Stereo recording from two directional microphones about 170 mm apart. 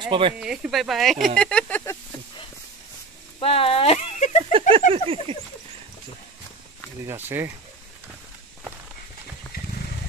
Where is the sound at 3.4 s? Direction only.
35° left (ahead or behind).